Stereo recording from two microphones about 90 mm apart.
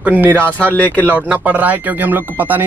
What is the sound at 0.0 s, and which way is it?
Speech, 20° right (ahead or behind).